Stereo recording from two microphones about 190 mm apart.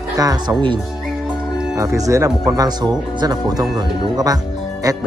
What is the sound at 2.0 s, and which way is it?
Speech, 15° right (ahead or behind).